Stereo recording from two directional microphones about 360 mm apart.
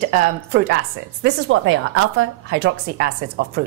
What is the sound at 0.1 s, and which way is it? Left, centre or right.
A woman's voice, right.